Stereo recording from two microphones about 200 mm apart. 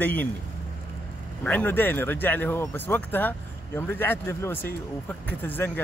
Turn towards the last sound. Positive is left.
turn(degrees=10)  # may be behind; listen again after turning